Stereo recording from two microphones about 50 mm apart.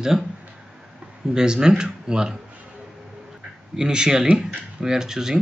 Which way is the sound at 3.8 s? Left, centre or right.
Centre.